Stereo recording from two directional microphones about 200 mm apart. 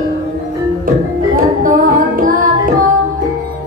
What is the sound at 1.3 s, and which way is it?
Music, 45° right (ahead or behind).